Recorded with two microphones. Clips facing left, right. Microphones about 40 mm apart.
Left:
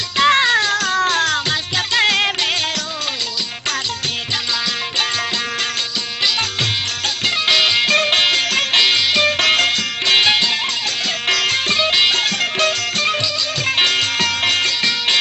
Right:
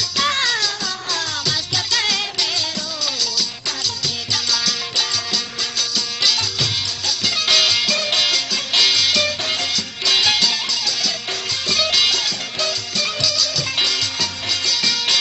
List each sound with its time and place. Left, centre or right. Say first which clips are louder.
0.2 s music: left 7 dB; left
7.4 s music: left 2 dB; left
7.8 s music: left 5 dB; left
8.7 s music: left 1 dB; left
9.5 s music: left 7 dB; left
11.7 s music: even; left
12.2 s music: left 6 dB; left